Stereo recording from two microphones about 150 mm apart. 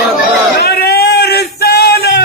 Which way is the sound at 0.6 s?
90° left.